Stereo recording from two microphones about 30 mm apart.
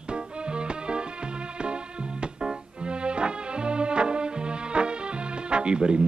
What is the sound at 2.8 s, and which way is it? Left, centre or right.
Music, right.